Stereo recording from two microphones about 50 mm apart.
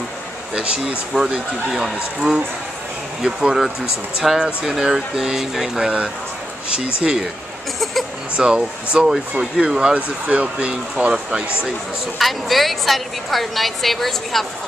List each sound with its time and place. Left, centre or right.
0.6 s speech: centre
3.2 s speech: centre
8.4 s speech: centre
9.9 s speech: right
12.2 s a woman's voice: centre